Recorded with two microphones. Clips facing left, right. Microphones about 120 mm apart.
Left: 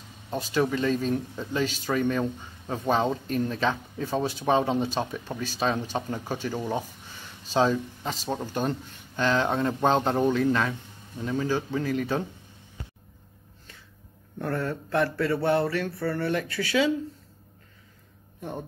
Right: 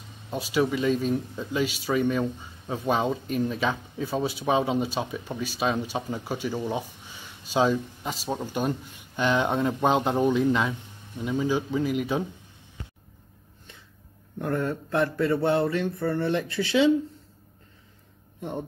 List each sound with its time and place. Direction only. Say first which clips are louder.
0.3 s speech: right 1 dB; 10° right (ahead or behind)
14.4 s speech: right 2 dB; 15° right (ahead or behind)